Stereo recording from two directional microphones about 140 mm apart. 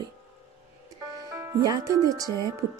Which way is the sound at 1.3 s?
25° right (ahead or behind).